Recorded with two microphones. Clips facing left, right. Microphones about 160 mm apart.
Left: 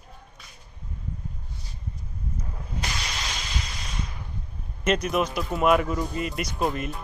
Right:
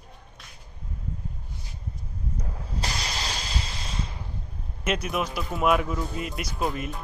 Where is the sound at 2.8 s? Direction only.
30° right (ahead or behind).